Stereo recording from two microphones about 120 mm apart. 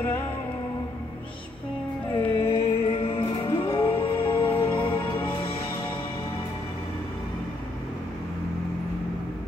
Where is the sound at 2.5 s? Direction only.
55° left (ahead or behind).